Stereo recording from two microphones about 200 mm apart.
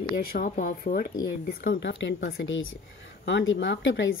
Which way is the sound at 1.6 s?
60° left (ahead or behind).